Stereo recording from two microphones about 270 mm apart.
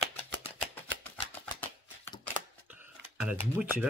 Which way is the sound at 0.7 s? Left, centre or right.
Centre.